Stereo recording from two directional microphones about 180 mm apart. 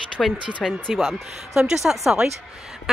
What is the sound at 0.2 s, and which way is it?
Speech, 5° left (ahead or behind).